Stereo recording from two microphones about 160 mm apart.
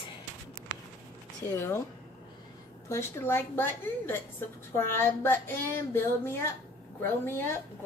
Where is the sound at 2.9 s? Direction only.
15° left (ahead or behind).